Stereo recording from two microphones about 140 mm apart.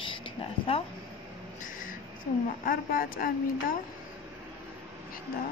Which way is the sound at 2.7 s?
90° left.